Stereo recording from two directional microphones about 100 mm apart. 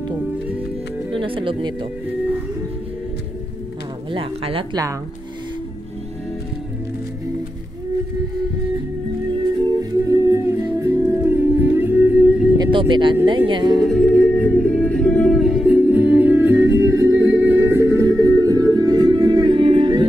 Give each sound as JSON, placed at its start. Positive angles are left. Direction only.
{"t": 1.1, "sound": "speech", "side_deg": -60}
{"t": 4.1, "sound": "speech", "side_deg": -70}
{"t": 9.8, "sound": "music", "side_deg": -35}
{"t": 12.5, "sound": "speech", "side_deg": -55}
{"t": 13.8, "sound": "music", "side_deg": 5}
{"t": 15.4, "sound": "music", "side_deg": -5}